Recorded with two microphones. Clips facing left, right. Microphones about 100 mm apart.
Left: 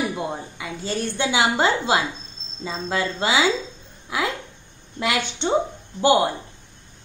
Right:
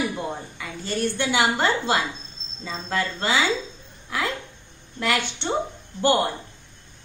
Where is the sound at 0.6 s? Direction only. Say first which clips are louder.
Right 1 dB; 20° left (ahead or behind).